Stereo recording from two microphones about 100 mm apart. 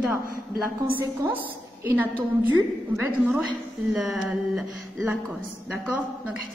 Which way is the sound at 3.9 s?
5° right (ahead or behind).